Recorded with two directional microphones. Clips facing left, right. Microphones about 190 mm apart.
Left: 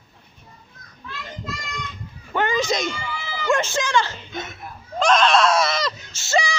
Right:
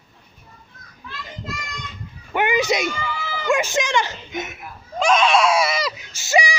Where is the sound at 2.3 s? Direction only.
15° right (ahead or behind).